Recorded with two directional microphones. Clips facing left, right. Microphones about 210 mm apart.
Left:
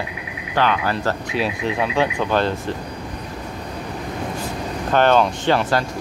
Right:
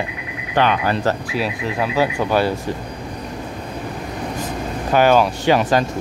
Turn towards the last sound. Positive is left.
turn(degrees=-15)  # may be behind; listen again after turning